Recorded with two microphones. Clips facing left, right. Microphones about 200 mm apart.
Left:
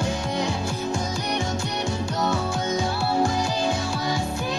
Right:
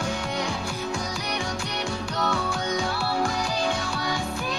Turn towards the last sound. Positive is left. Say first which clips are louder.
# left 3 dB
turn(degrees=25)  # may be behind; listen again after turning